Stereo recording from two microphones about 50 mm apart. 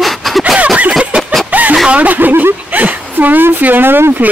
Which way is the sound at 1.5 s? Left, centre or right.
Right.